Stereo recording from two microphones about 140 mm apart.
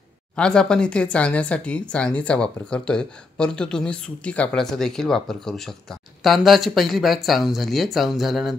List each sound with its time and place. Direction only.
0.4 s speech: 5° left (ahead or behind)